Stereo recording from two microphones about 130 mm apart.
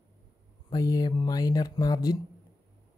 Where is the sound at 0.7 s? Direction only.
30° left (ahead or behind).